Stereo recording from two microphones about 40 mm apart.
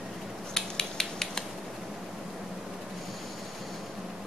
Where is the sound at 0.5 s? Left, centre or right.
Centre.